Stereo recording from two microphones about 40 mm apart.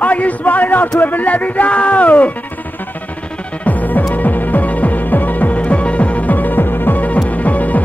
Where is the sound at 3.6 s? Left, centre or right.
Left.